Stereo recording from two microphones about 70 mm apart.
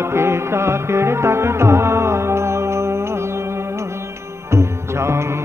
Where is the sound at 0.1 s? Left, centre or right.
Right.